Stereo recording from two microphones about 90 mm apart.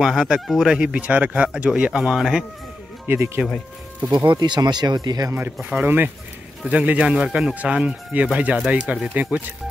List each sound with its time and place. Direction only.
0.0 s speech: 5° right (ahead or behind)
3.1 s speech: 20° right (ahead or behind)
4.3 s speech: 55° right (ahead or behind)
5.3 s speech: 15° right (ahead or behind)